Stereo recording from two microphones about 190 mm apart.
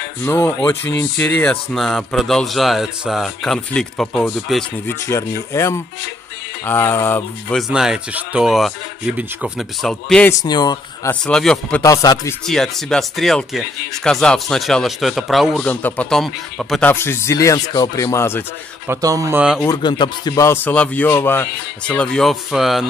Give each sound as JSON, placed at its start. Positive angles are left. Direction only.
{"t": 0.2, "sound": "a man's voice", "side_deg": 10}
{"t": 5.0, "sound": "speech", "side_deg": 15}
{"t": 7.7, "sound": "a man's voice", "side_deg": -5}
{"t": 10.4, "sound": "speech", "side_deg": 20}
{"t": 11.1, "sound": "a man's voice", "side_deg": 5}
{"t": 11.8, "sound": "speech", "side_deg": 20}
{"t": 12.4, "sound": "a man's voice", "side_deg": 0}
{"t": 18.9, "sound": "speech", "side_deg": -15}
{"t": 19.6, "sound": "speech", "side_deg": 20}